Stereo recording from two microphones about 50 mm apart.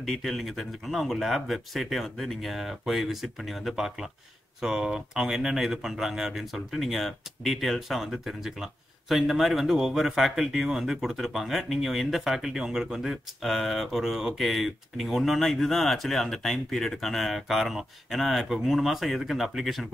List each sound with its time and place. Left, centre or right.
0.0 s speech: centre